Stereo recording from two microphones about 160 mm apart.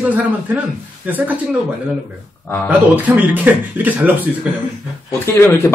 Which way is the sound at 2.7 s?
10° right (ahead or behind).